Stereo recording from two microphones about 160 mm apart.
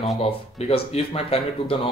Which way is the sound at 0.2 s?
35° left (ahead or behind).